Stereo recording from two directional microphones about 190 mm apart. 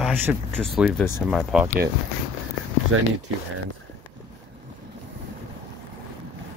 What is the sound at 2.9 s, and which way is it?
Speech, 90° right.